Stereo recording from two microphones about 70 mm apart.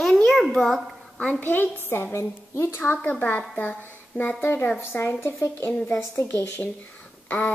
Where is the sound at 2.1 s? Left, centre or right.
Left.